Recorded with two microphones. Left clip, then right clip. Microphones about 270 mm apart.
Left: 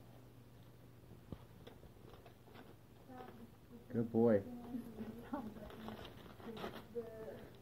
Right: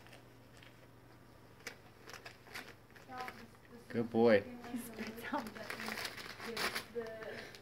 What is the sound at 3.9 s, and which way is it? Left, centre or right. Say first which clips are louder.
Speech: right 4 dB; right.